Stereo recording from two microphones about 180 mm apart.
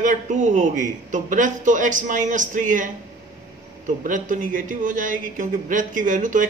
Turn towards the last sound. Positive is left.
turn(degrees=-45)  # may be behind; listen again after turning